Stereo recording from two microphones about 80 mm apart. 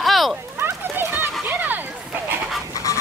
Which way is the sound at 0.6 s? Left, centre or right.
Right.